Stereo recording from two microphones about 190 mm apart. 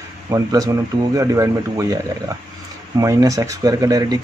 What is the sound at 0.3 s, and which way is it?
Speech, 20° right (ahead or behind).